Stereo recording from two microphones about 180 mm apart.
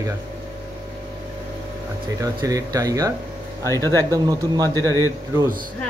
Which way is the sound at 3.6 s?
15° left (ahead or behind).